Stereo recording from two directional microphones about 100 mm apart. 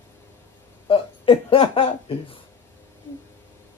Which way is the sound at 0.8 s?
60° left (ahead or behind).